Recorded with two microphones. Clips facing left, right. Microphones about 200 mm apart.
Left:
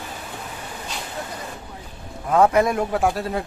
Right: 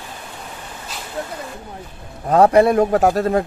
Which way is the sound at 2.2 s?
35° right (ahead or behind).